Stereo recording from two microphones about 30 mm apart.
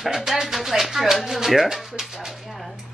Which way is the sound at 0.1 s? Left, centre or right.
Centre.